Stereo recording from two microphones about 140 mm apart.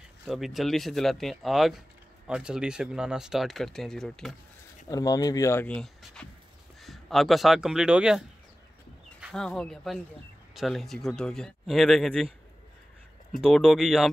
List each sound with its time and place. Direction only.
0.3 s speech: centre (ahead or behind)
4.8 s speech: 25° left (ahead or behind)
5.7 s speech: 5° left (ahead or behind)
9.2 s speech: 5° left (ahead or behind)
13.4 s speech: 5° left (ahead or behind)